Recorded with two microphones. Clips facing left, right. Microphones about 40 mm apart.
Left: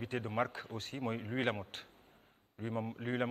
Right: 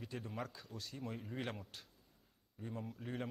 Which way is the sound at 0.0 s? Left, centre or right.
Left.